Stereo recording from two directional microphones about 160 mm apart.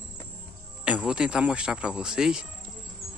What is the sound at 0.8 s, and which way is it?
Speech, 5° right (ahead or behind).